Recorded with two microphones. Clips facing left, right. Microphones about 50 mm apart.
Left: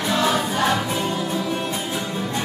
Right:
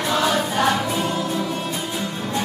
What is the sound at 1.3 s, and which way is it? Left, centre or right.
Music, centre.